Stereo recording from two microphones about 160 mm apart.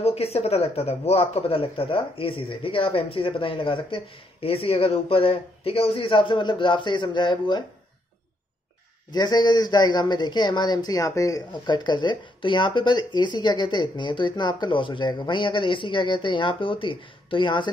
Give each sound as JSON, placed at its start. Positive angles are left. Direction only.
{"t": 0.0, "sound": "speech", "side_deg": 40}
{"t": 9.1, "sound": "a man's voice", "side_deg": 25}